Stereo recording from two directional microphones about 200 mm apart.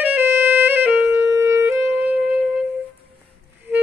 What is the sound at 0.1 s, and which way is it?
Music, 10° right (ahead or behind).